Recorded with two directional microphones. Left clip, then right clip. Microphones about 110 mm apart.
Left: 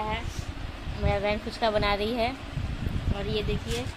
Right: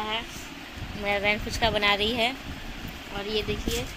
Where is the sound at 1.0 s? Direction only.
10° left (ahead or behind).